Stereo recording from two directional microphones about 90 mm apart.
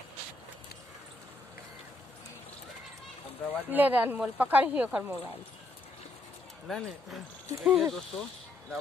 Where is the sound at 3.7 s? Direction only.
20° right (ahead or behind).